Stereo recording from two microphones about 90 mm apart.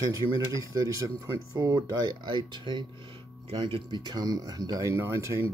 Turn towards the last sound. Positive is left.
turn(degrees=-35)  # may be behind; listen again after turning